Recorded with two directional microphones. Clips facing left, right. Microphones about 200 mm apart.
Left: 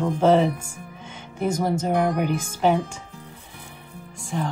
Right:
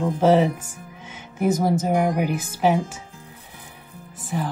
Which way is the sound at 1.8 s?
10° right (ahead or behind).